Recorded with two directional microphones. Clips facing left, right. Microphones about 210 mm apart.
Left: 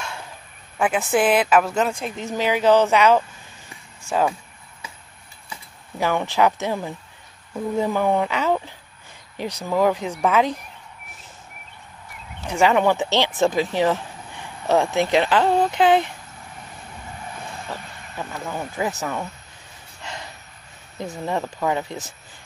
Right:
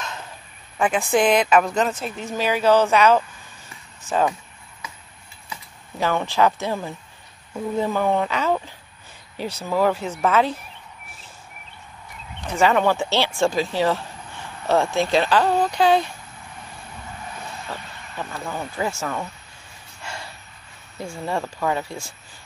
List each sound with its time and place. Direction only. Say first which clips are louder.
0.7 s a woman's voice: even; 5° left (ahead or behind)
5.9 s speech: even; 15° left (ahead or behind)
12.4 s speech: left 1 dB; 15° left (ahead or behind)
18.2 s speech: even; 10° left (ahead or behind)
20.0 s a sound: even; 20° left (ahead or behind)
21.3 s speech: left 1 dB; 20° left (ahead or behind)